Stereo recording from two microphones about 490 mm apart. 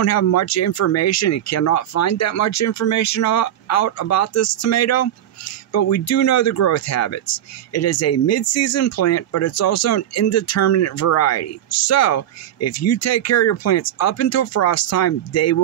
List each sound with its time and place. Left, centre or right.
0.0 s speech: left